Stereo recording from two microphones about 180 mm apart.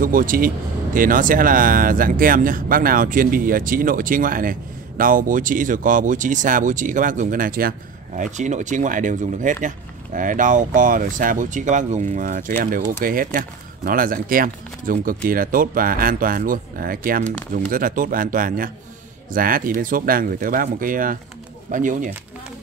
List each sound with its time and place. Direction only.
0.0 s speech: 50° right (ahead or behind)